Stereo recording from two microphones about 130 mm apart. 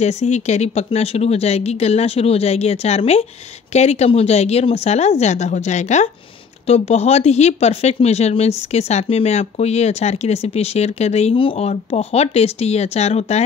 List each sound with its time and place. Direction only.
0.0 s speech: 60° left (ahead or behind)